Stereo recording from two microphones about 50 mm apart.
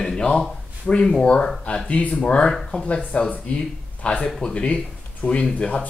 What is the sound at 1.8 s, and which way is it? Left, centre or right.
Speech, left.